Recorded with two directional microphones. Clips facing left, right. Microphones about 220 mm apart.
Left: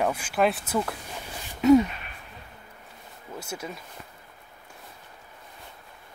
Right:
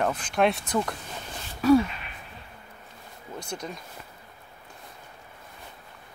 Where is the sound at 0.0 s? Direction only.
10° left (ahead or behind).